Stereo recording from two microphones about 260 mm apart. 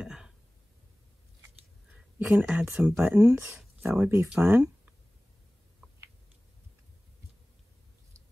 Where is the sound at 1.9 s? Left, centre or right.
Centre.